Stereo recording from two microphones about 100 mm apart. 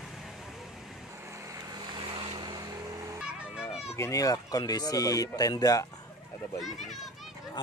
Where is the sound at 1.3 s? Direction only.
35° right (ahead or behind).